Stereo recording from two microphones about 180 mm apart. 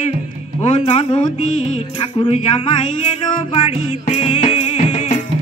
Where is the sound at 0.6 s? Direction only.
40° left (ahead or behind).